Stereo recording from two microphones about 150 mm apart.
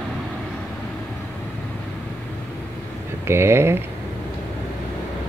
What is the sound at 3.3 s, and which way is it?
Speech, 15° right (ahead or behind).